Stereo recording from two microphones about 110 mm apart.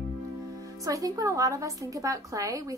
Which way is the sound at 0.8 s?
35° right (ahead or behind).